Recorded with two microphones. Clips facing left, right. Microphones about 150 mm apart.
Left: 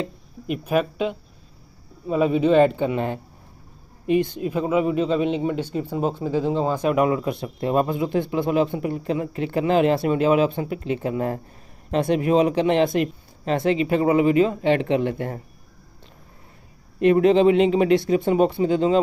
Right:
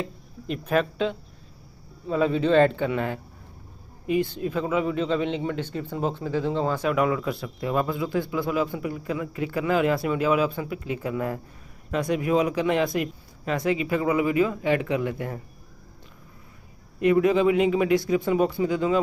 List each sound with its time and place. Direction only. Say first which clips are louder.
0.5 s a man's voice: left 2 dB; 10° left (ahead or behind); by 15.4 s 30° left (ahead or behind)
17.0 s a man's voice: left 4 dB; 30° left (ahead or behind)